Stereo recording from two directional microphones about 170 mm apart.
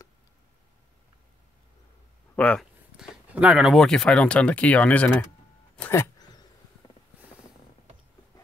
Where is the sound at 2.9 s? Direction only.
5° right (ahead or behind).